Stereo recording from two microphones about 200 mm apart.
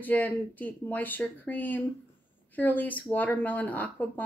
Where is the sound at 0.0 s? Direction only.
10° left (ahead or behind).